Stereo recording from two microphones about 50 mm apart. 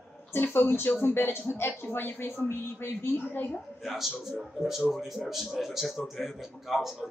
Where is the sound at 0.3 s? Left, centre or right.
Left.